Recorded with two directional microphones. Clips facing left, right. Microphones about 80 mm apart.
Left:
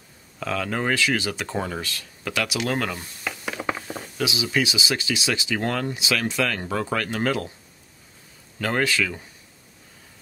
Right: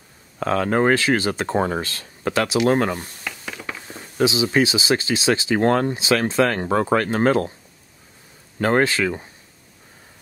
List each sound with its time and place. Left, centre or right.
0.4 s speech: right
3.5 s a sound: left
4.2 s speech: right
8.5 s speech: right